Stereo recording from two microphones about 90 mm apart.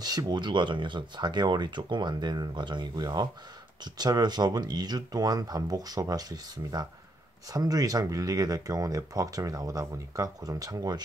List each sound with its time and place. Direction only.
0.0 s speech: 45° right (ahead or behind)